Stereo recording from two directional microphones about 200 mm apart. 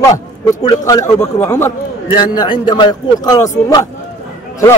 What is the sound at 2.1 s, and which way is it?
Speech, 25° left (ahead or behind).